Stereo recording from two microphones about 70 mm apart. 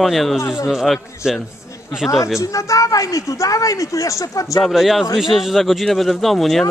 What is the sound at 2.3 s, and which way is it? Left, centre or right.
Speech, left.